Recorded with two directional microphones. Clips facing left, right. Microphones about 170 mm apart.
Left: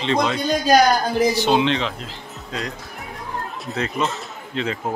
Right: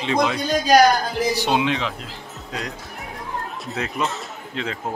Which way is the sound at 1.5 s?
5° right (ahead or behind).